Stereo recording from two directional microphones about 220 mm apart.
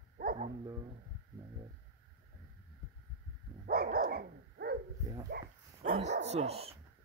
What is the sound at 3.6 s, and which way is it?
Dog, 45° right (ahead or behind).